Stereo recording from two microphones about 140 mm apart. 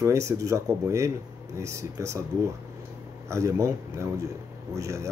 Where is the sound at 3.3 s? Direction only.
20° right (ahead or behind).